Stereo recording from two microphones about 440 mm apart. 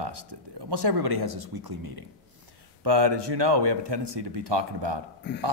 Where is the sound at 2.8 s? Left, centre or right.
Right.